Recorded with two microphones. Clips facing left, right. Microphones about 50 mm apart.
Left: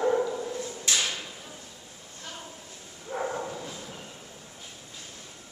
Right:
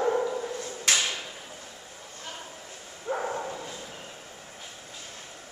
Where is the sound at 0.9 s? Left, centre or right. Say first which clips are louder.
Right 3 dB; right.